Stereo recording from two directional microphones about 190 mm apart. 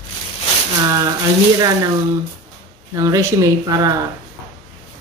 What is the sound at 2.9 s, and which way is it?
Speech, 15° right (ahead or behind).